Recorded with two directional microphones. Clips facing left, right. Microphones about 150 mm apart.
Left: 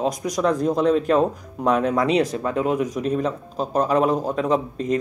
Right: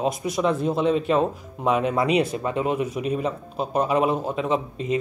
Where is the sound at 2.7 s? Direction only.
40° left (ahead or behind).